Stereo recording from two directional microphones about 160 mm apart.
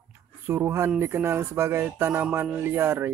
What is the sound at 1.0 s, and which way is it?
Speech, 15° right (ahead or behind).